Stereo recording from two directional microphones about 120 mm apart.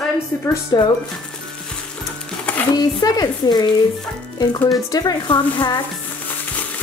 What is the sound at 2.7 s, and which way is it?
Speech, 35° left (ahead or behind).